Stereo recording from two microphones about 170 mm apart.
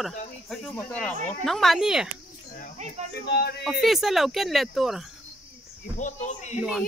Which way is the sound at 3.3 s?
70° left (ahead or behind).